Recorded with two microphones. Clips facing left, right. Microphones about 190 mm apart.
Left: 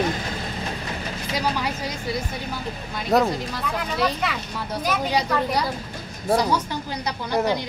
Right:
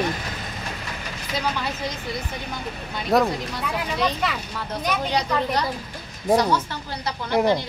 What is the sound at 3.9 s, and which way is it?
Speech, 5° left (ahead or behind).